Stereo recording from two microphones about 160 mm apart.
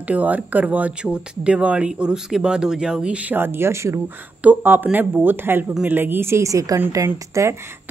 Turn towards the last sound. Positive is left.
turn(degrees=-15)  # may be behind; listen again after turning